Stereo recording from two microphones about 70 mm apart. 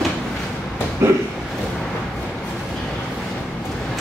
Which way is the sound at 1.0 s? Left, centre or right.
Right.